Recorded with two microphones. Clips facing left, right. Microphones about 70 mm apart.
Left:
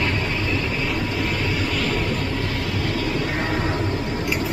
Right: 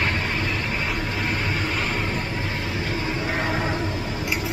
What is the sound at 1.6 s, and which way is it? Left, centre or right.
Vehicle, right.